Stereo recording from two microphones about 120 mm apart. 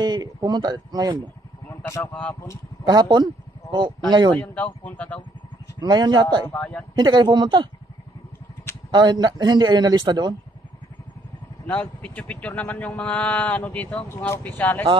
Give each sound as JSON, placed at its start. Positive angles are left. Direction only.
{"t": 0.0, "sound": "speech", "side_deg": -35}
{"t": 2.0, "sound": "speech", "side_deg": 20}
{"t": 2.8, "sound": "a man's voice", "side_deg": -35}
{"t": 4.4, "sound": "speech", "side_deg": 15}
{"t": 5.8, "sound": "a man's voice", "side_deg": -35}
{"t": 6.6, "sound": "speech", "side_deg": 10}
{"t": 7.0, "sound": "a man's voice", "side_deg": -40}
{"t": 8.9, "sound": "a man's voice", "side_deg": -40}
{"t": 11.6, "sound": "speech", "side_deg": 10}